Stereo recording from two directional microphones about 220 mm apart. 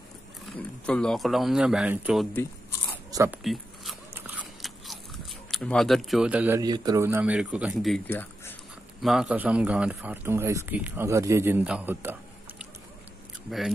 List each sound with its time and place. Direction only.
0.5 s speech: 5° left (ahead or behind)
3.1 s zipper: 15° right (ahead or behind)
4.1 s speech: 5° right (ahead or behind)
9.0 s a man's voice: 5° right (ahead or behind)